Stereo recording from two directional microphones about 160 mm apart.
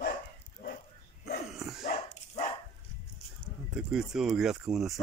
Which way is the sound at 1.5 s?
Centre (ahead or behind).